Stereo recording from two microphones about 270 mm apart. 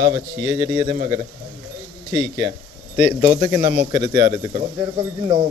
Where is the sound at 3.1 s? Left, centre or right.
Centre.